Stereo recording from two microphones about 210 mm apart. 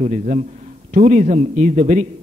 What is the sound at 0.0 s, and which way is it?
A man's voice, 35° right (ahead or behind).